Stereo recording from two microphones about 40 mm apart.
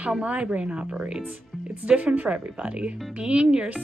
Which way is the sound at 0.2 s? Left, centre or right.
Right.